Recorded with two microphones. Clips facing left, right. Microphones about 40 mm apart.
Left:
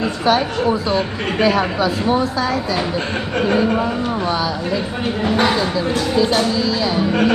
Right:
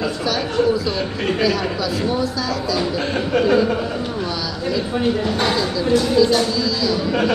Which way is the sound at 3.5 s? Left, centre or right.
Left.